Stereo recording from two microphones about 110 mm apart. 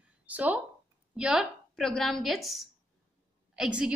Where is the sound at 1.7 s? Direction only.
5° left (ahead or behind).